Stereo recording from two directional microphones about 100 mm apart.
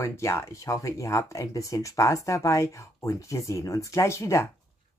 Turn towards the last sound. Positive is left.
turn(degrees=30)  # may be behind; listen again after turning